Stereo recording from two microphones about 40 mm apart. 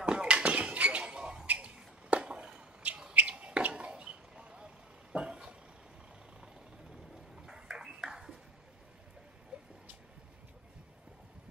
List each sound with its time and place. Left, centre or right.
0.0 s basketball bounce: right
1.5 s bird: right
3.7 s vehicle: right
7.3 s ping: centre
9.5 s vehicle: right